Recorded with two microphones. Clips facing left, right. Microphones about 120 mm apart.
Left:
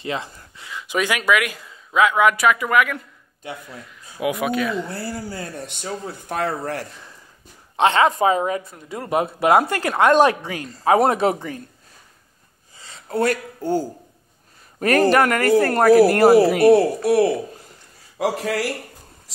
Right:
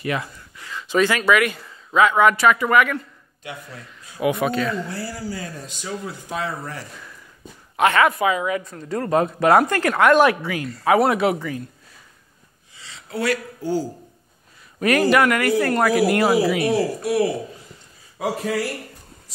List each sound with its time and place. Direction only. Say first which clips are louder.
0.0 s speech: right 2 dB; 25° left (ahead or behind); by 3.0 s centre (ahead or behind)
4.2 s speech: right 1 dB; 5° left (ahead or behind)
5.0 s speech: left 1 dB; 55° left (ahead or behind)
7.7 s speech: left 1 dB; 25° left (ahead or behind)
9.0 s speech: right 1 dB; 15° left (ahead or behind); by 11.6 s 35° left (ahead or behind)
12.7 s a sound: left 6 dB; 45° left (ahead or behind)
14.8 s speech: left 1 dB; 40° left (ahead or behind); by 17.6 s 60° left (ahead or behind)
18.2 s speech: left 2 dB; 85° left